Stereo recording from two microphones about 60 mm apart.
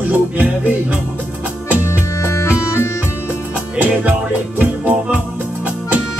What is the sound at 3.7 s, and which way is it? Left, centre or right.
Music, right.